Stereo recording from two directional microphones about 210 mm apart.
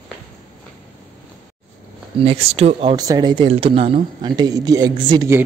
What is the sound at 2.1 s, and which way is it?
Speech, 25° right (ahead or behind).